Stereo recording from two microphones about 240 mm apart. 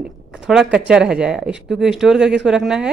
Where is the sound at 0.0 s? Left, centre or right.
Centre.